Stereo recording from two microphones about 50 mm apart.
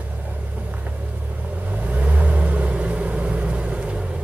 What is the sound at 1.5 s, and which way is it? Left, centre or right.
Vehicle, right.